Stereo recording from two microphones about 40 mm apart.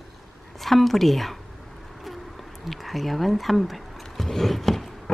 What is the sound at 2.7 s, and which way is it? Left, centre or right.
Speech, centre.